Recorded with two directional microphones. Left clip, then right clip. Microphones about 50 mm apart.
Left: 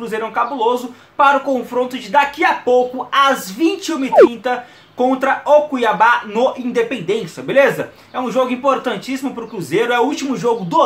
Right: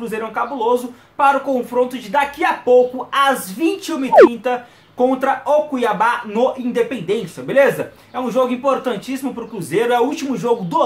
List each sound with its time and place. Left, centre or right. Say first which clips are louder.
0.1 s speech: left 4 dB; left
3.5 s speech: left 2 dB; centre
4.5 s speech: left 1 dB; left
10.3 s speech: left 1 dB; left